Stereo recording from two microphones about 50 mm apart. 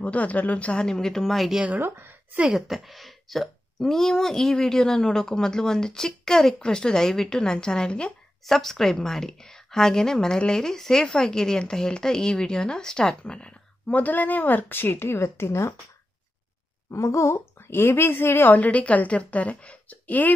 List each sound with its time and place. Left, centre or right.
0.0 s a woman's voice: left
0.7 s speech: centre
1.8 s speech: right
2.5 s speech: centre
8.5 s a woman's voice: centre; by 15.7 s left
16.9 s a woman's voice: left